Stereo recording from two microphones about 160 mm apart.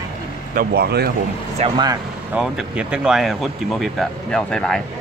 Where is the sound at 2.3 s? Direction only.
5° right (ahead or behind).